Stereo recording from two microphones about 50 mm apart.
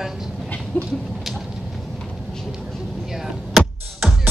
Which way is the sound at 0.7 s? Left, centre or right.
Centre.